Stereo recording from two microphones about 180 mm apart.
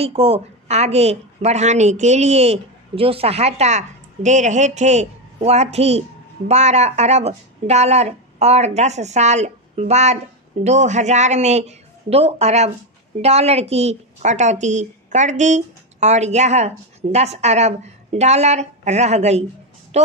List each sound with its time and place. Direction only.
0.0 s a woman's voice: 35° right (ahead or behind)